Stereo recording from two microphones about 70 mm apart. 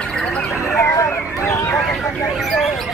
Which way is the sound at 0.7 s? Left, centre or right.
Left.